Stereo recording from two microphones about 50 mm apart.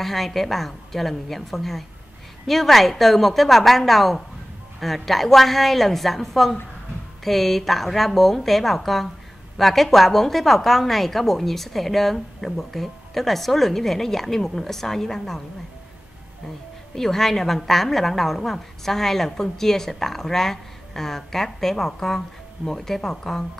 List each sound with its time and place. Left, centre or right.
0.0 s a woman's voice: centre
16.9 s a woman's voice: centre